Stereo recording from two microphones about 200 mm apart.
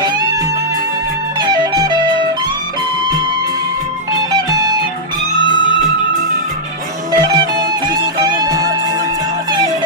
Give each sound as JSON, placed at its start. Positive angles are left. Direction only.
{"t": 1.4, "sound": "music", "side_deg": -20}
{"t": 7.1, "sound": "music", "side_deg": -20}